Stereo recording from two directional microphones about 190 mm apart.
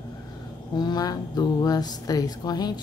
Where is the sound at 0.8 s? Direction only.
20° left (ahead or behind).